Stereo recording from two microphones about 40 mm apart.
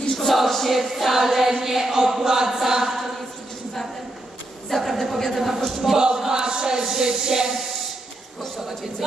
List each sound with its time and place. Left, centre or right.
0.1 s choir: centre
4.6 s a woman's voice: centre
5.9 s speech: centre